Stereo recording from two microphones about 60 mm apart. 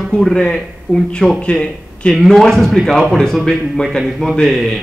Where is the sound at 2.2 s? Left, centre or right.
Centre.